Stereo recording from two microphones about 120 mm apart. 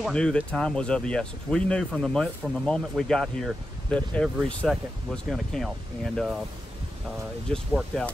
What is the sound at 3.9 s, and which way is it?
Speech, 10° left (ahead or behind).